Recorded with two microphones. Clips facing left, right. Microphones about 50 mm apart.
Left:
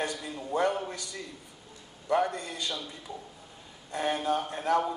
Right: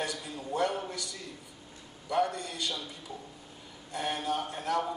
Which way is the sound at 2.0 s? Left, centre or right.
Left.